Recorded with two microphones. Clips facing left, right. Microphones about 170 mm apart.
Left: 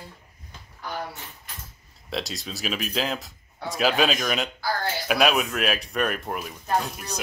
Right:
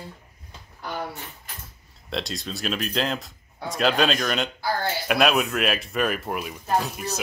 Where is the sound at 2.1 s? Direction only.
Centre (ahead or behind).